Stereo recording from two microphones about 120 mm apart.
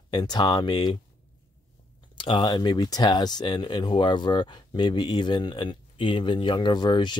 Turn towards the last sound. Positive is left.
turn(degrees=40)  # may be behind; listen again after turning